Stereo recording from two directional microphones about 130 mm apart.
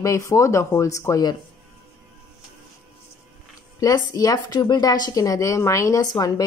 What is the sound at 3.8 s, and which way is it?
Speech, 30° left (ahead or behind).